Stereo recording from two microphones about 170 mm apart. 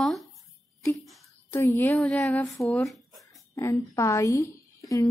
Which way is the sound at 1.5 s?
15° left (ahead or behind).